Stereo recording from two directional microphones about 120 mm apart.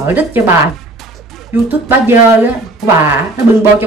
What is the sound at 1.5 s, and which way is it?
A woman's voice, 15° right (ahead or behind).